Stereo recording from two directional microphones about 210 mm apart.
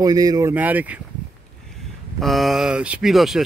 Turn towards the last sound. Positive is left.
turn(degrees=0)  # may be behind; listen again after turning